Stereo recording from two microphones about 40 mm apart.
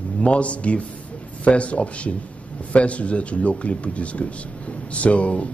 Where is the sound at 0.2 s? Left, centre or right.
Left.